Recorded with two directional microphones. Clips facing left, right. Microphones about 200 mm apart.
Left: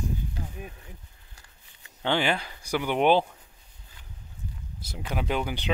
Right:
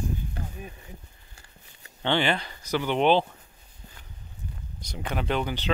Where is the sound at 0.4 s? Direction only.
55° right (ahead or behind).